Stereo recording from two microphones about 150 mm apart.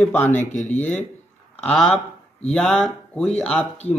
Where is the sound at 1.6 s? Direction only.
5° left (ahead or behind).